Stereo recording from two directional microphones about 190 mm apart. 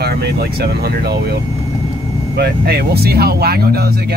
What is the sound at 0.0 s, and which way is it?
Speech, 55° right (ahead or behind).